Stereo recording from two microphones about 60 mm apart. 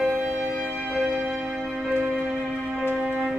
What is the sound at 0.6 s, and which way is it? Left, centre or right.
Music, left.